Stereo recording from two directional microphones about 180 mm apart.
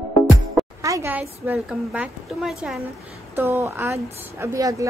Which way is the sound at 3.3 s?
15° right (ahead or behind).